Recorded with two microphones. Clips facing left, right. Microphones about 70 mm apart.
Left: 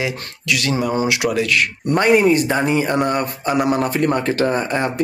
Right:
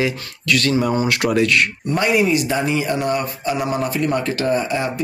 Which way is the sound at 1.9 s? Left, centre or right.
Left.